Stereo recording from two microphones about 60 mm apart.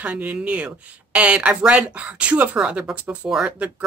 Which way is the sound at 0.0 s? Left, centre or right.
Right.